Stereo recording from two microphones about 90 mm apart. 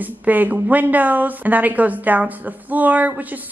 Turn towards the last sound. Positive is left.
turn(degrees=-20)  # may be behind; listen again after turning